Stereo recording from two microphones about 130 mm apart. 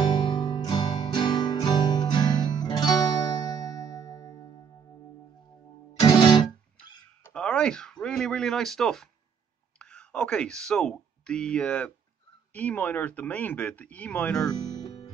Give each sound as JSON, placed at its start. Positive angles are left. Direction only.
{"t": 0.1, "sound": "music", "side_deg": 35}
{"t": 5.9, "sound": "music", "side_deg": 30}
{"t": 7.3, "sound": "speech", "side_deg": 5}
{"t": 14.7, "sound": "music", "side_deg": 30}